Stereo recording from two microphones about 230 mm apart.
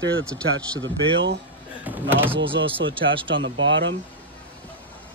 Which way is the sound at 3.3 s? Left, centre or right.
Right.